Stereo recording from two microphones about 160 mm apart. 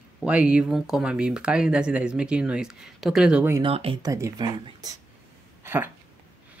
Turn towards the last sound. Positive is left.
turn(degrees=-15)  # may be behind; listen again after turning